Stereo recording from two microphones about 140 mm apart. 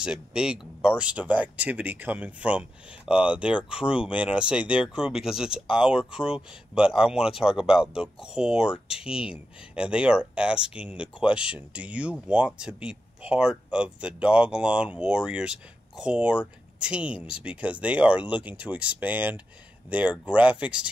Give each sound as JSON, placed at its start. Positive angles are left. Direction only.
{"t": 0.0, "sound": "speech", "side_deg": -5}